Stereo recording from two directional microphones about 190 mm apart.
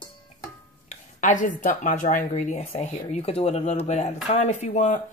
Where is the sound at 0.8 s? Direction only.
40° left (ahead or behind).